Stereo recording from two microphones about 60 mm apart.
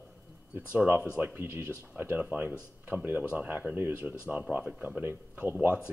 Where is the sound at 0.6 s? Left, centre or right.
Right.